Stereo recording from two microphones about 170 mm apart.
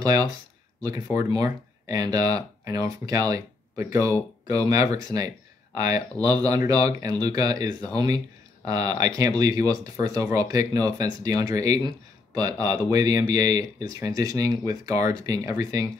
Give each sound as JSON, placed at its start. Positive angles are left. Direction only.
{"t": 0.0, "sound": "speech", "side_deg": -20}